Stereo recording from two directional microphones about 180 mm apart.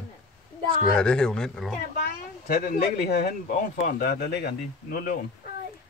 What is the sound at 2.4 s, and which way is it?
Speech, 55° left (ahead or behind).